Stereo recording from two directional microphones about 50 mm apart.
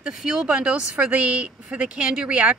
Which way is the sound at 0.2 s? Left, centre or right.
Centre.